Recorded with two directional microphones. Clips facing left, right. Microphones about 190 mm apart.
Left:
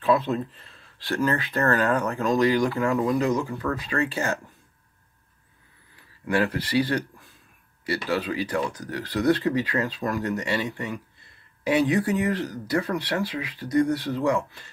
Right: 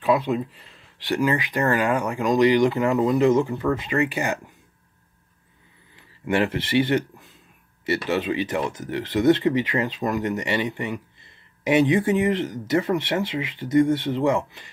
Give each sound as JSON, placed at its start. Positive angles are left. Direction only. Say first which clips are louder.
{"t": 0.0, "sound": "speech", "louder": "right 1 dB", "side_deg": -15}
{"t": 6.2, "sound": "speech", "louder": "right 2 dB", "side_deg": -25}